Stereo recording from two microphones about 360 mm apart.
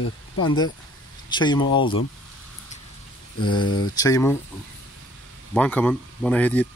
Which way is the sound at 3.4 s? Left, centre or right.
Centre.